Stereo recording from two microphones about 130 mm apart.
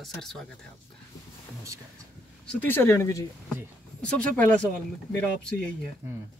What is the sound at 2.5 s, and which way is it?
Speech, 15° left (ahead or behind).